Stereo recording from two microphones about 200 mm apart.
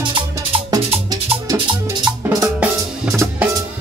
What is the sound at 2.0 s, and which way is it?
Drum kit, 20° right (ahead or behind).